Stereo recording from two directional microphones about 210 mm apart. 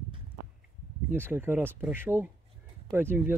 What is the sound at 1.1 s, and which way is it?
Speech, 10° right (ahead or behind).